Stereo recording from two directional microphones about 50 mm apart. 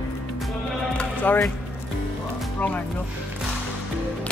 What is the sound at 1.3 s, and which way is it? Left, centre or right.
Speech, left.